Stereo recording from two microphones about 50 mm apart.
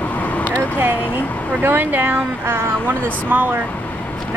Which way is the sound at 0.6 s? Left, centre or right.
Right.